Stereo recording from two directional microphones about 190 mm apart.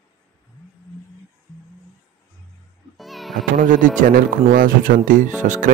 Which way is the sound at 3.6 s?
45° right (ahead or behind).